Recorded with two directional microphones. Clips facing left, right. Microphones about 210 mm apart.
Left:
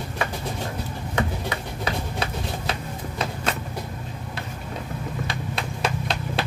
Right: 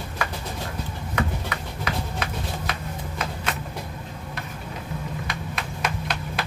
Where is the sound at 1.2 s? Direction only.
30° left (ahead or behind).